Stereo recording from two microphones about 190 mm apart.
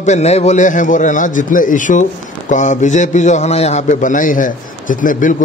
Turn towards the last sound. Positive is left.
turn(degrees=45)  # may be behind; listen again after turning